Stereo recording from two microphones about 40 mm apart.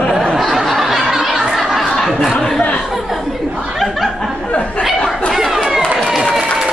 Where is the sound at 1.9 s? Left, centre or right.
Centre.